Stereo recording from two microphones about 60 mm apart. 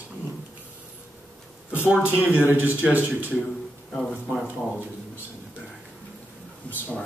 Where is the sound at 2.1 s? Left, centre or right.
Right.